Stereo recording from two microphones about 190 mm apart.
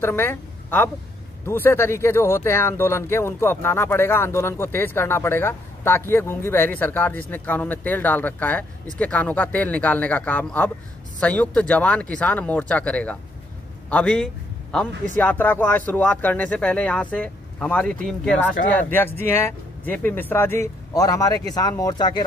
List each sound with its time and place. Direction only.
0.0 s a woman's voice: 10° left (ahead or behind)